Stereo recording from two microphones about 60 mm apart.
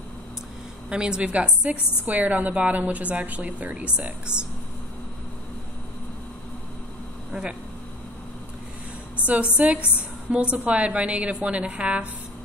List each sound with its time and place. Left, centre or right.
0.8 s a woman's voice: centre
9.2 s a woman's voice: right